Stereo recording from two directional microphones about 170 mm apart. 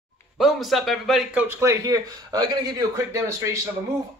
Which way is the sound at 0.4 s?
Centre (ahead or behind).